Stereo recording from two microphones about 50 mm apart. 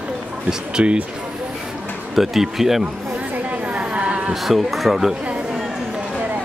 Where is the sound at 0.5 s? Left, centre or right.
Centre.